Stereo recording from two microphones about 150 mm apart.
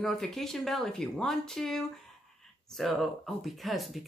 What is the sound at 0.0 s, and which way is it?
Speech, centre (ahead or behind).